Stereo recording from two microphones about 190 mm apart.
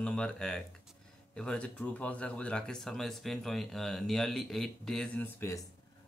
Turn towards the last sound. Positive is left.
turn(degrees=15)  # may be behind; listen again after turning